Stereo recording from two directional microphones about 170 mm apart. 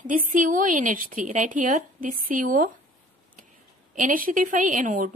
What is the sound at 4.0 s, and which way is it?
Speech, 55° right (ahead or behind).